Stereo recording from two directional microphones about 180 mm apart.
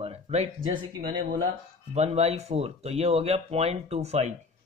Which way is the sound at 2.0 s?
35° right (ahead or behind).